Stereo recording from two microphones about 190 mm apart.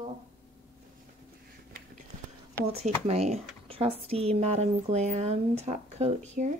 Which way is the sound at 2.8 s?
35° right (ahead or behind).